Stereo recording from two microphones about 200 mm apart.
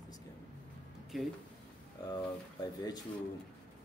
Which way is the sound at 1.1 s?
Centre (ahead or behind).